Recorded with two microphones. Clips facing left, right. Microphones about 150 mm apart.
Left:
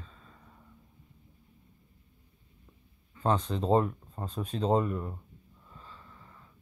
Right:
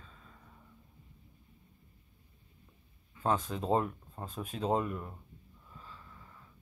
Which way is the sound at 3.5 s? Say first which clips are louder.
Left 5 dB; 5° right (ahead or behind).